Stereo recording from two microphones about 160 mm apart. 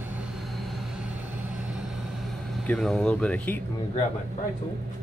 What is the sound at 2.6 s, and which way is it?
Speech, 5° left (ahead or behind).